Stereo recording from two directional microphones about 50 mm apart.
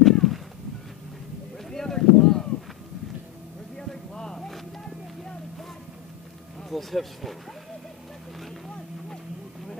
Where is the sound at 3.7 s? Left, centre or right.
Centre.